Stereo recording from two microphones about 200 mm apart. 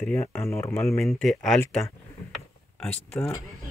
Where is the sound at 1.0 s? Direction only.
Centre (ahead or behind).